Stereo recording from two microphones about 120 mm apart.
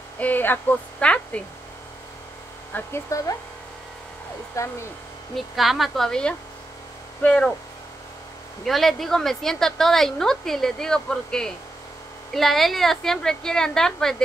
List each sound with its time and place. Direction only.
0.2 s a woman's voice: 15° left (ahead or behind)
2.7 s speech: 25° left (ahead or behind)
4.6 s speech: 25° left (ahead or behind)
5.3 s a woman's voice: centre (ahead or behind)
8.6 s a woman's voice: centre (ahead or behind)